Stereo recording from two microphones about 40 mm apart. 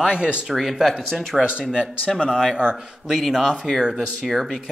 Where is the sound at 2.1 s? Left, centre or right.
Centre.